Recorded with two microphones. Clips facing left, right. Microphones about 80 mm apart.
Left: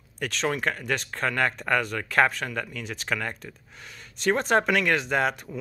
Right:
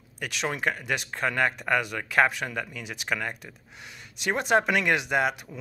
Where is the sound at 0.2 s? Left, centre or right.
Centre.